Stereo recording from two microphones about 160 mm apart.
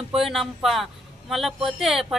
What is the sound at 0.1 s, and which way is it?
Speech, centre (ahead or behind).